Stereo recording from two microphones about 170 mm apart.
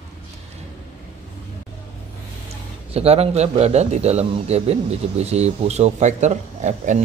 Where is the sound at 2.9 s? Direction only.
35° right (ahead or behind).